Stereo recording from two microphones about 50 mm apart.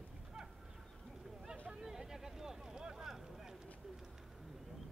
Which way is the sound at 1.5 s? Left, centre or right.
Centre.